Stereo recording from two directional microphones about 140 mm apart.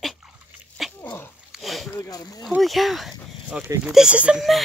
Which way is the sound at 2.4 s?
Centre (ahead or behind).